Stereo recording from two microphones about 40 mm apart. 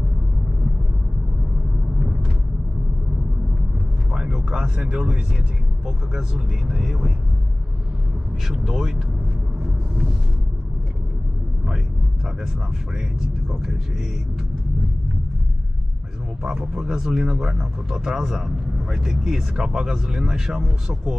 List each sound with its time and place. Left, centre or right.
4.3 s a sound: centre
4.8 s speech: centre
8.5 s speech: centre
16.4 s speech: centre